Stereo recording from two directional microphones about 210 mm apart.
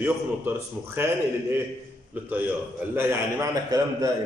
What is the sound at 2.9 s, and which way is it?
A man's voice, 15° right (ahead or behind).